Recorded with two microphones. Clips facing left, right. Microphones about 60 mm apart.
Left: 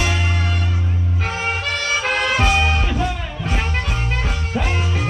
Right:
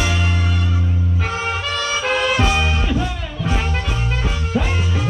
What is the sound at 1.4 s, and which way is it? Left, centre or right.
Music, left.